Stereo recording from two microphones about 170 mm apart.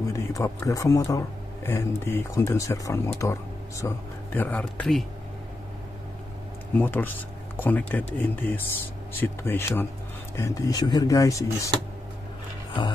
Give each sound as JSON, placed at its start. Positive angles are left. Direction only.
{"t": 0.1, "sound": "speech", "side_deg": 15}
{"t": 6.7, "sound": "speech", "side_deg": 10}